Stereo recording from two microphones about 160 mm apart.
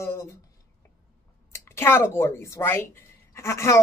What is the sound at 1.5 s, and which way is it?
Speech, 15° left (ahead or behind).